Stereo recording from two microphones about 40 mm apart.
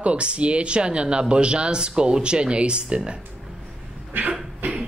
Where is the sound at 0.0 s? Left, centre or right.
Right.